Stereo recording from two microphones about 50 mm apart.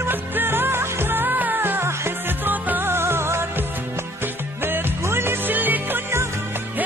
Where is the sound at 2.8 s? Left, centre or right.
Right.